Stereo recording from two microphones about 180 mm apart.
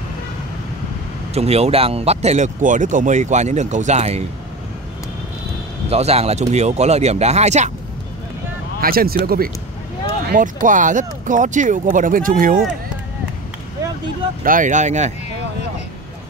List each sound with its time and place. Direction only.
1.3 s speech: 35° right (ahead or behind)
5.9 s speech: 35° right (ahead or behind)
8.8 s speech: 55° right (ahead or behind)
14.4 s speech: 45° right (ahead or behind)